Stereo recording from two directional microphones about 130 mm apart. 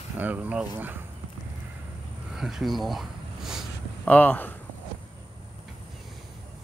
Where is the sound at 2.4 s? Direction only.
Centre (ahead or behind).